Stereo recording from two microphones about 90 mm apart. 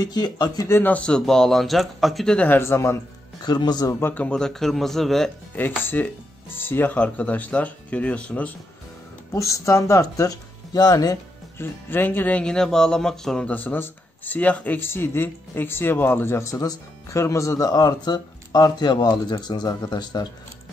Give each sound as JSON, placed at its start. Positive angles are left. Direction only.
{"t": 0.0, "sound": "speech", "side_deg": 50}
{"t": 0.7, "sound": "speech", "side_deg": 20}
{"t": 2.3, "sound": "speech", "side_deg": 20}
{"t": 2.6, "sound": "speech", "side_deg": 30}
{"t": 3.4, "sound": "speech", "side_deg": 50}
{"t": 4.0, "sound": "speech", "side_deg": 15}
{"t": 5.8, "sound": "speech", "side_deg": 25}
{"t": 9.3, "sound": "speech", "side_deg": 35}
{"t": 11.5, "sound": "speech", "side_deg": 25}
{"t": 13.5, "sound": "speech", "side_deg": 20}